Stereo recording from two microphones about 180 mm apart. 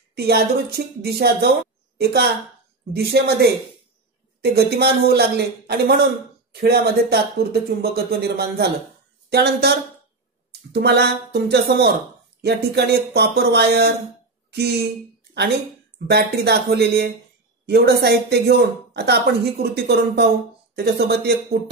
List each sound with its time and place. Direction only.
0.1 s a woman's voice: 60° right (ahead or behind)
16.1 s speech: 65° right (ahead or behind)